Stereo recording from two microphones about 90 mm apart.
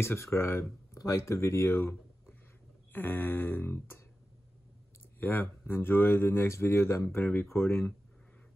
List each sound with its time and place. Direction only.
0.0 s speech: 30° left (ahead or behind)
5.2 s speech: 25° left (ahead or behind)